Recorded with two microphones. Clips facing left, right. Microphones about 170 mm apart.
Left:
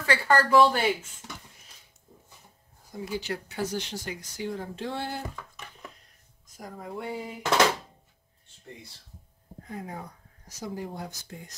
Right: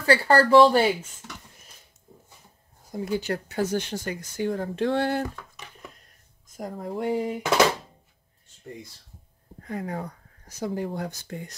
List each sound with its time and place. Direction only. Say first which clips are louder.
0.0 s speech: right 5 dB; 35° right (ahead or behind)
2.9 s speech: right 5 dB; 45° right (ahead or behind); by 5.2 s 65° right (ahead or behind)
6.5 s speech: right 6 dB; 50° right (ahead or behind)
9.7 s speech: right 7 dB; 75° right (ahead or behind)